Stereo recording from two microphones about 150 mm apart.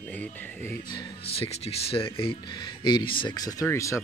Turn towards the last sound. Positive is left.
turn(degrees=20)  # may be behind; listen again after turning